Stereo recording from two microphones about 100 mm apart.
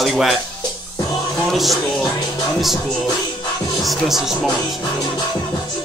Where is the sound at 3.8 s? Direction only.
5° right (ahead or behind).